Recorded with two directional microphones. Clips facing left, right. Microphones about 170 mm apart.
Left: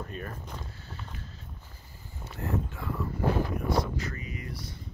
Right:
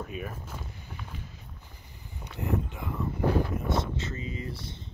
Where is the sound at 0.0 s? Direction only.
5° right (ahead or behind).